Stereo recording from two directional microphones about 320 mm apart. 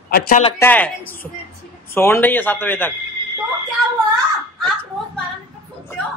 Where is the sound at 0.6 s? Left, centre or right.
Centre.